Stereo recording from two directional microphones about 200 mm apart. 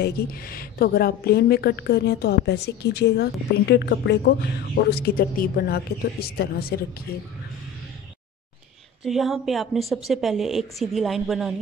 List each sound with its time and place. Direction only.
0.0 s a woman's voice: 50° left (ahead or behind)
9.0 s a woman's voice: centre (ahead or behind)